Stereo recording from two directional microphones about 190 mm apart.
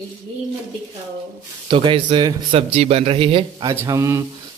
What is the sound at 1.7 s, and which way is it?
A man's voice, 25° right (ahead or behind).